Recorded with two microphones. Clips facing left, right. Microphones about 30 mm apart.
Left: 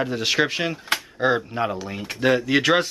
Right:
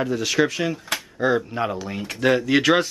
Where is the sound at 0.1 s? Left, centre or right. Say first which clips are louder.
Right 1 dB; left.